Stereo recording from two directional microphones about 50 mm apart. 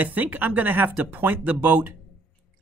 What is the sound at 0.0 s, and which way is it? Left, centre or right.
Speech, right.